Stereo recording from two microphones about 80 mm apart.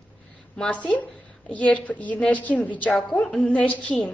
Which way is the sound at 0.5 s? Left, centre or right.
Centre.